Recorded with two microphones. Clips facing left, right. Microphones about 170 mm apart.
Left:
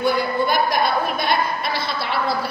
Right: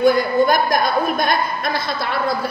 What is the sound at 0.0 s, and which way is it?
A woman's voice, 45° right (ahead or behind).